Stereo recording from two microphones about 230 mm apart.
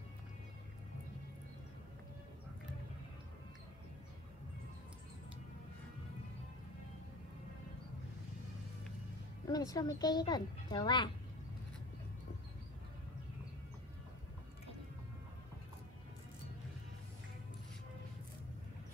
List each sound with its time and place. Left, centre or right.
9.5 s a woman's voice: centre